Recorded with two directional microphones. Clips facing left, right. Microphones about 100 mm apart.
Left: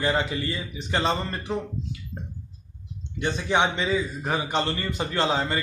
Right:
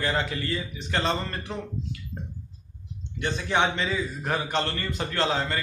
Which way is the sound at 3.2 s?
15° left (ahead or behind).